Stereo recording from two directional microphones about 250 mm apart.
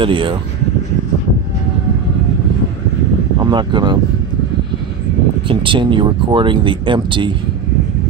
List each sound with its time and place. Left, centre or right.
0.0 s speech: centre
3.3 s speech: centre
5.5 s speech: centre